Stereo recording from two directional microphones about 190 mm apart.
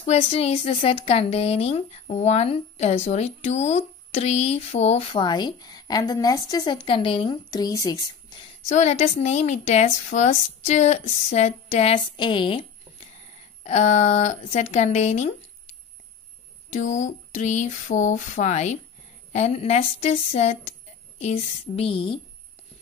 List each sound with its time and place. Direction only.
0.0 s speech: 35° left (ahead or behind); by 8.4 s 20° left (ahead or behind)
8.6 s speech: 35° left (ahead or behind)
16.7 s speech: 40° left (ahead or behind)